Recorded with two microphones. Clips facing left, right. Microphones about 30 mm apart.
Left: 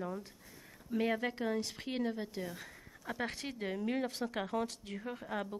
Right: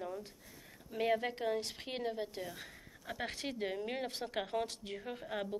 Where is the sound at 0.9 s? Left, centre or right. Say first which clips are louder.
Even; centre.